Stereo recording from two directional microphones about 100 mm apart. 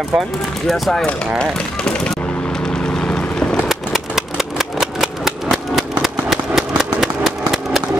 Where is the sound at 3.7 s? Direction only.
5° right (ahead or behind).